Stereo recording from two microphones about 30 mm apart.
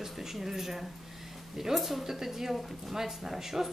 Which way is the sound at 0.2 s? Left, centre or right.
Centre.